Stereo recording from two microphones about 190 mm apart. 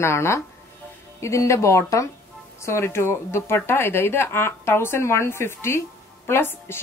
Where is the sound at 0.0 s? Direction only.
15° left (ahead or behind).